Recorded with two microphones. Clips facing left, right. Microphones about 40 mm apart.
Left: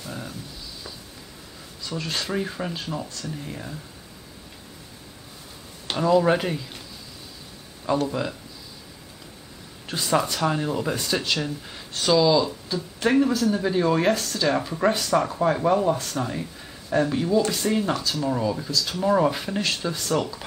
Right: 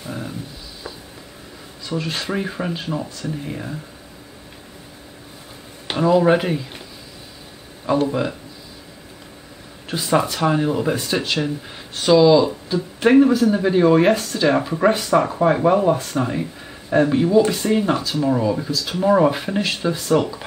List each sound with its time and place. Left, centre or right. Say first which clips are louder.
0.0 s a sound: right 5 dB; centre
1.9 s speech: right 4 dB; centre
5.9 s speech: right 4 dB; centre
8.1 s speech: right 5 dB; centre
9.8 s speech: right 4 dB; centre